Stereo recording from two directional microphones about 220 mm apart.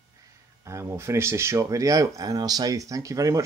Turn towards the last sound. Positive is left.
turn(degrees=-15)  # may be behind; listen again after turning